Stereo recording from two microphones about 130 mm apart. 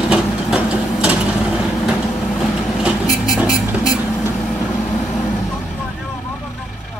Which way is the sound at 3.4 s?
30° left (ahead or behind).